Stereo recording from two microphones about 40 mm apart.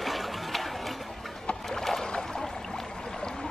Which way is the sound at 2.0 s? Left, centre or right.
Centre.